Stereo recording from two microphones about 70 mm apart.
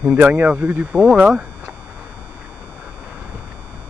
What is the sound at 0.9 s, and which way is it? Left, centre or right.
Speech, centre.